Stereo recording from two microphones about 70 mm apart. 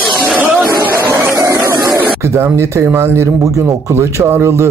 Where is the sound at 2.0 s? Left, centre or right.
Right.